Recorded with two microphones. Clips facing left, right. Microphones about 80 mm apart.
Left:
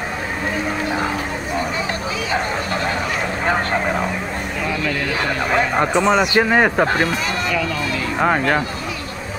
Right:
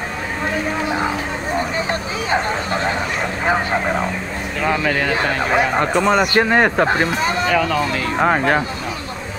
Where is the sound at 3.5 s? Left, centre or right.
Centre.